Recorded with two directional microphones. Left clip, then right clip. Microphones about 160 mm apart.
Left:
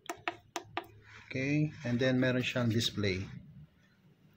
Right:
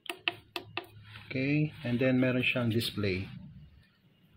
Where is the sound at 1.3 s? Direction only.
30° right (ahead or behind).